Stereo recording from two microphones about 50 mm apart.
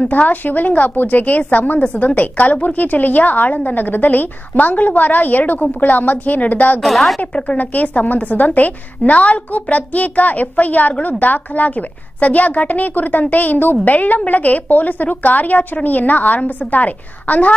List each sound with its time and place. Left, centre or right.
0.1 s a woman's voice: left
6.8 s a woman's voice: centre
7.3 s a woman's voice: left